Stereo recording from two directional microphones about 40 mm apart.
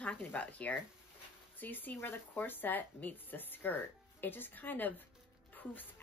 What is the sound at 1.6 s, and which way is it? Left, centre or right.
Speech, left.